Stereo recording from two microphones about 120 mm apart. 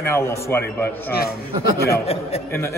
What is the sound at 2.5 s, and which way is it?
Speech, 20° left (ahead or behind).